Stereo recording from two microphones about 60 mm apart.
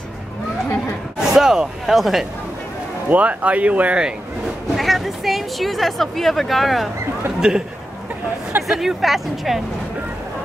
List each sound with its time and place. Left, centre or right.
1.3 s speech: centre
3.1 s speech: right
4.7 s speech: centre
8.6 s speech: centre